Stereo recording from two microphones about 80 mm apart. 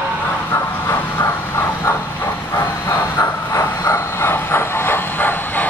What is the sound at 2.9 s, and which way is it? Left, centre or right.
Train, left.